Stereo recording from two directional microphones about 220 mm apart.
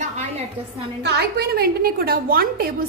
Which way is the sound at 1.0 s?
50° right (ahead or behind).